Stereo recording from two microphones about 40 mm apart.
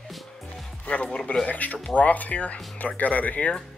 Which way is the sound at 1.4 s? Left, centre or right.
Left.